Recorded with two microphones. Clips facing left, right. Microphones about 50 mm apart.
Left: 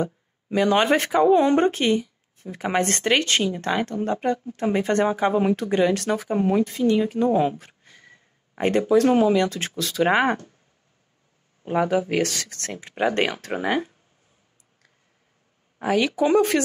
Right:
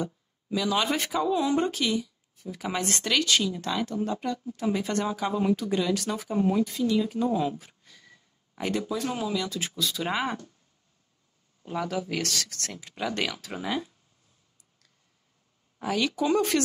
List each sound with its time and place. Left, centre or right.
0.0 s speech: left
7.8 s a sound: left
9.1 s speech: left
11.6 s speech: left
15.8 s speech: left